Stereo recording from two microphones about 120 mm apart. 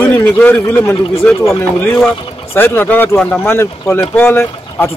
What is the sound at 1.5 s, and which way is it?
Speech, 20° left (ahead or behind).